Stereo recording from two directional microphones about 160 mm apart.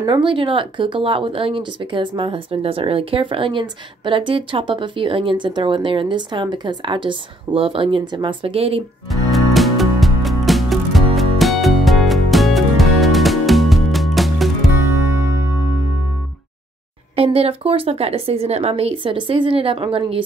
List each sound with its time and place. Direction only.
0.0 s speech: 30° right (ahead or behind)
9.3 s music: centre (ahead or behind)
17.1 s speech: 35° right (ahead or behind)